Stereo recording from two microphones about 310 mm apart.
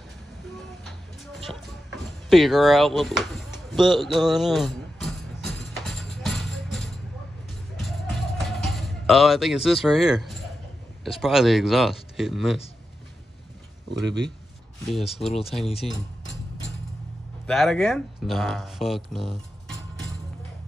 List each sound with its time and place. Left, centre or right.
2.2 s a sound: centre
7.8 s music: centre
11.1 s speech: centre
13.8 s speech: right
14.9 s speech: centre
17.5 s speech: centre